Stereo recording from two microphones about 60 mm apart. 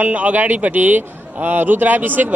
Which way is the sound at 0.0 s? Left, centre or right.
Right.